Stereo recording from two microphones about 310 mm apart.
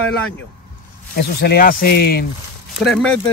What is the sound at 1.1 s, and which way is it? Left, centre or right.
Speech, left.